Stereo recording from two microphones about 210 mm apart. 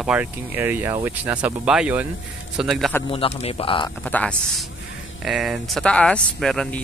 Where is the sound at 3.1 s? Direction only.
25° left (ahead or behind).